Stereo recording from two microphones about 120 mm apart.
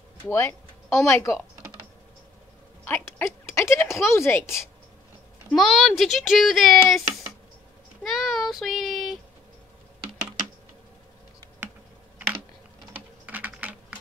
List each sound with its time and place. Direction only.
0.3 s speech: 20° left (ahead or behind)
2.8 s speech: 15° left (ahead or behind)
5.5 s speech: centre (ahead or behind)
8.0 s child singing: centre (ahead or behind)
11.6 s insect: 15° right (ahead or behind)
12.9 s typing: 15° right (ahead or behind)